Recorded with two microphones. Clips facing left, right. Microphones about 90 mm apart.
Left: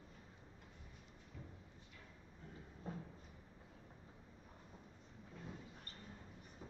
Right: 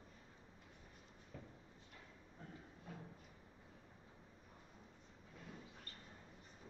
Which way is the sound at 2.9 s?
35° left (ahead or behind).